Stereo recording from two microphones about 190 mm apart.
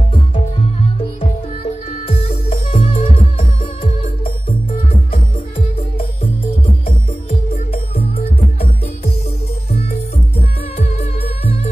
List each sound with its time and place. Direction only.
0.3 s music: 25° left (ahead or behind)
7.2 s music: 30° left (ahead or behind)